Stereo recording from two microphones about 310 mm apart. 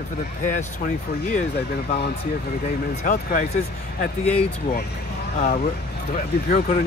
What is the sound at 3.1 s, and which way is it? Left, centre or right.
Speech, left.